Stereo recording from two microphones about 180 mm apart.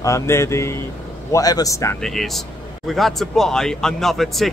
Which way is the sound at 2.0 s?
Centre (ahead or behind).